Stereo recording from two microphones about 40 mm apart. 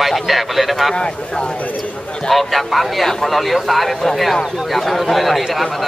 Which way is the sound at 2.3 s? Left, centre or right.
Centre.